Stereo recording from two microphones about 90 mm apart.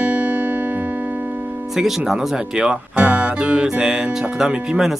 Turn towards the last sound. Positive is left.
turn(degrees=-5)  # may be behind; listen again after turning